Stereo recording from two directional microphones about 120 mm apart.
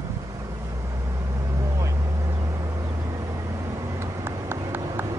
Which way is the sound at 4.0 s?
20° right (ahead or behind).